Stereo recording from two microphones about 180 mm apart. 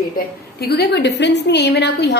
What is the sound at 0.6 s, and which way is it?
A woman's voice, 65° left (ahead or behind).